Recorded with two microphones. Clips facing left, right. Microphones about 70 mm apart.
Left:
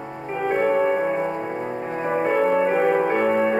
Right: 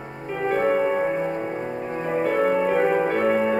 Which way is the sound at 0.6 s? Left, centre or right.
Centre.